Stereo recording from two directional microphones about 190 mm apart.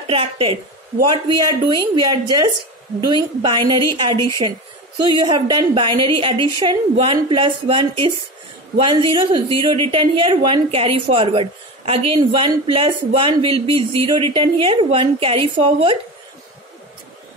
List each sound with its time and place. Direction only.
0.0 s a woman's voice: 30° right (ahead or behind)
1.7 s a woman's voice: 20° right (ahead or behind)